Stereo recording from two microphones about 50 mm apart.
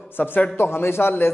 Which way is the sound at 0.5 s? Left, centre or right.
Left.